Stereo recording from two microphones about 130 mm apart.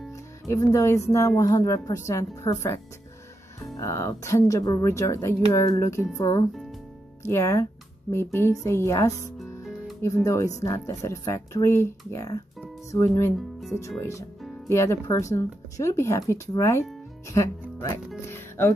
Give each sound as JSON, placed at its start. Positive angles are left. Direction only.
{"t": 0.5, "sound": "a woman's voice", "side_deg": 25}
{"t": 10.2, "sound": "a woman's voice", "side_deg": 25}
{"t": 13.4, "sound": "speech", "side_deg": 0}
{"t": 14.7, "sound": "a woman's voice", "side_deg": 20}
{"t": 18.2, "sound": "music", "side_deg": 20}